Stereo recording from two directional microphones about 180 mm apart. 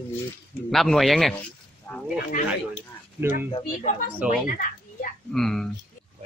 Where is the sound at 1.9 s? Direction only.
15° left (ahead or behind).